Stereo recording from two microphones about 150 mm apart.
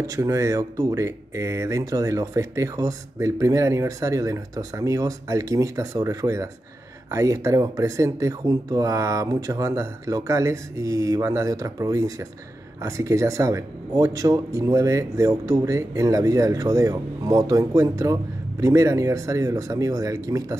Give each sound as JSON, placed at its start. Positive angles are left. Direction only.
{"t": 0.0, "sound": "speech", "side_deg": -20}